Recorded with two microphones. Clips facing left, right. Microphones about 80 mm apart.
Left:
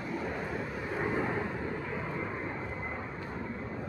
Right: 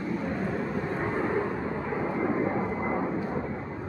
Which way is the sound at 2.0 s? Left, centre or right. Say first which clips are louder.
Right 9 dB; right.